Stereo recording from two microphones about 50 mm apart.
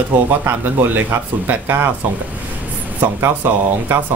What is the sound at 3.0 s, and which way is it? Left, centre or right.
Speech, right.